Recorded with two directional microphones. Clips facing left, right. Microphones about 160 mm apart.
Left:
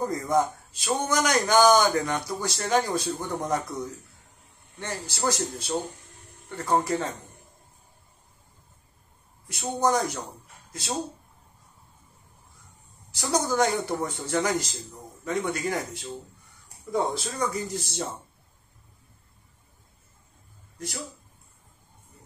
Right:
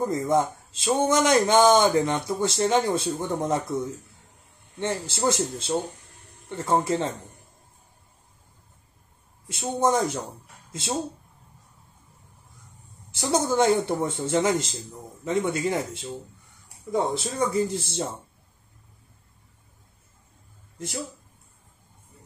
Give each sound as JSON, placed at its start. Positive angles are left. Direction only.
{"t": 0.0, "sound": "a man's voice", "side_deg": -25}
{"t": 9.5, "sound": "a man's voice", "side_deg": -25}
{"t": 13.1, "sound": "a man's voice", "side_deg": -25}
{"t": 20.7, "sound": "speech", "side_deg": -25}